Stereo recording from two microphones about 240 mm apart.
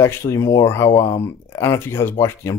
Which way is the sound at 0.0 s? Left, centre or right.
Centre.